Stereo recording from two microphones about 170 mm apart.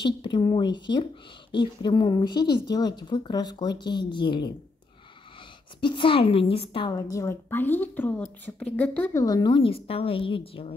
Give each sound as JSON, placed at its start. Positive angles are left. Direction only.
{"t": 0.0, "sound": "speech", "side_deg": 25}
{"t": 5.8, "sound": "a woman's voice", "side_deg": 30}
{"t": 9.2, "sound": "a woman's voice", "side_deg": 25}